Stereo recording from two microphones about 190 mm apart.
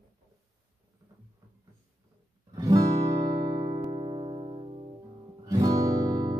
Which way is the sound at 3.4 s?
25° right (ahead or behind).